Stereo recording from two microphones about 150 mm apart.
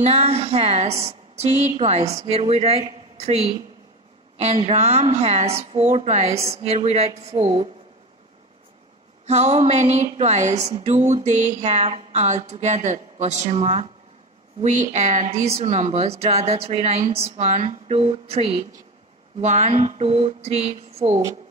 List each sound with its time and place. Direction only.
0.0 s a woman's voice: 45° right (ahead or behind)
9.2 s a woman's voice: 50° right (ahead or behind)